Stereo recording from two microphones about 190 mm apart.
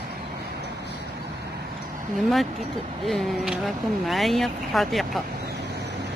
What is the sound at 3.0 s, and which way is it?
Speech, centre (ahead or behind).